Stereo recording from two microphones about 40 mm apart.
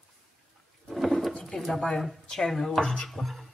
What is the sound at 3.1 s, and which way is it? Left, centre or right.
Music, centre.